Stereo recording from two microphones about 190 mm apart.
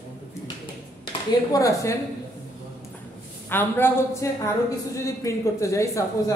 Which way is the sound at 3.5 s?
10° left (ahead or behind).